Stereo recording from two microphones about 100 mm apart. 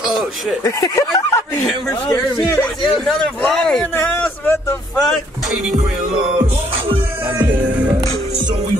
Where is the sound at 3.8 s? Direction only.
25° left (ahead or behind).